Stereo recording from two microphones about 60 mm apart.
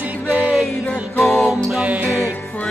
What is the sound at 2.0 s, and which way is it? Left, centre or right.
Music, left.